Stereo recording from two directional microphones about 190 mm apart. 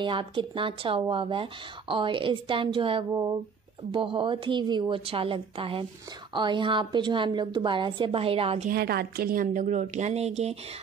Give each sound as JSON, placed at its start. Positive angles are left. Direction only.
{"t": 0.0, "sound": "speech", "side_deg": -25}
{"t": 8.6, "sound": "a woman's voice", "side_deg": -55}